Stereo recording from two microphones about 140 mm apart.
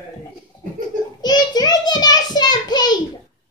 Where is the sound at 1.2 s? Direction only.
30° left (ahead or behind).